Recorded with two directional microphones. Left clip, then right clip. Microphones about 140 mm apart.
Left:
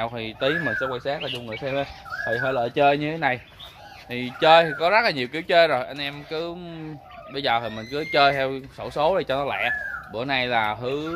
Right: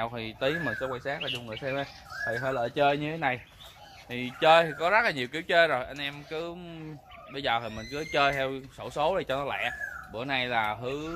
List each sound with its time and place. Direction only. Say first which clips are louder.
0.0 s speech: left 5 dB; 20° right (ahead or behind); by 11.1 s centre (ahead or behind)